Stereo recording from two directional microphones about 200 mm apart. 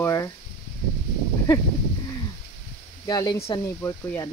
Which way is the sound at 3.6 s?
10° left (ahead or behind).